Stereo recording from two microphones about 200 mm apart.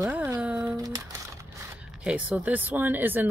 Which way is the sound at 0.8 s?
20° right (ahead or behind).